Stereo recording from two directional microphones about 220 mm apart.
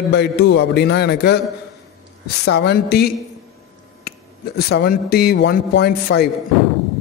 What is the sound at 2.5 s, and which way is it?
Speech, 50° left (ahead or behind).